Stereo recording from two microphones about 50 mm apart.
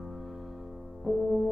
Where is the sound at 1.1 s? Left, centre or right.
Centre.